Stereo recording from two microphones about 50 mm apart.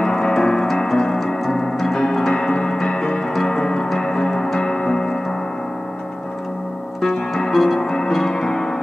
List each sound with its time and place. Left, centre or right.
0.0 s music: centre
0.9 s tick-tock: centre
1.2 s a sound: centre
1.6 s keyboard: centre
3.4 s music: centre
7.0 s music: centre